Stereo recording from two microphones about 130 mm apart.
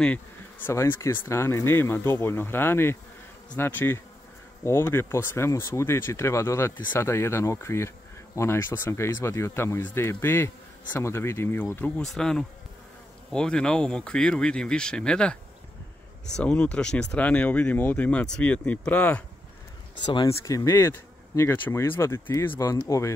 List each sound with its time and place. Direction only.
0.0 s speech: 15° left (ahead or behind)
12.0 s speech: 5° left (ahead or behind)
20.2 s speech: 25° left (ahead or behind)